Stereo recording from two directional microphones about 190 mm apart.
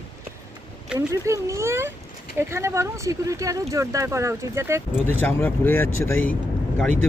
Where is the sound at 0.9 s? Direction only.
15° right (ahead or behind).